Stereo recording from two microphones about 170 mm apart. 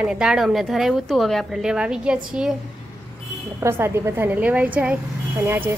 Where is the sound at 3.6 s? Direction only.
15° right (ahead or behind).